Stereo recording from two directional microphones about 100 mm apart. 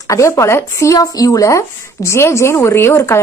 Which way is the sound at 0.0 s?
30° left (ahead or behind).